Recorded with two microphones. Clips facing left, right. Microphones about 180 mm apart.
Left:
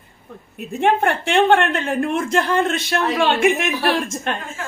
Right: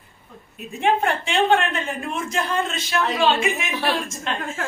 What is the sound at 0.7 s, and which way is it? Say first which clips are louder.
A woman's voice: left 3 dB; 60° left (ahead or behind).